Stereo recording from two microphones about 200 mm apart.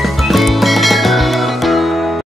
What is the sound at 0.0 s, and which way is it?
Music, centre (ahead or behind).